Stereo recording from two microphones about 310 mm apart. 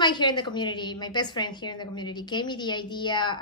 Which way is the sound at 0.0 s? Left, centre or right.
Centre.